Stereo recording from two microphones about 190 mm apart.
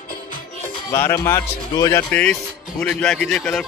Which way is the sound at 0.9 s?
15° left (ahead or behind).